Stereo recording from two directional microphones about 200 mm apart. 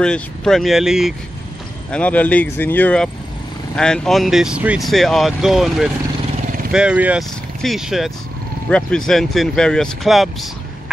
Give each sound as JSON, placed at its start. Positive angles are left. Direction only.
{"t": 0.0, "sound": "speech", "side_deg": 5}